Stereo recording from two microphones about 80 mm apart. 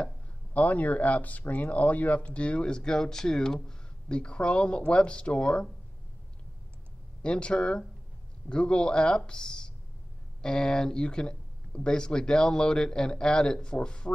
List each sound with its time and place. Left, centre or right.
0.5 s speech: centre
7.2 s speech: centre